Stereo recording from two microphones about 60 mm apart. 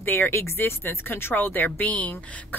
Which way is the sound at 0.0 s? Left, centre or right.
Left.